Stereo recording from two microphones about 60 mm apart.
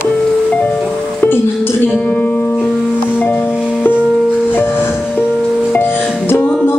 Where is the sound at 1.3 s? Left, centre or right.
Left.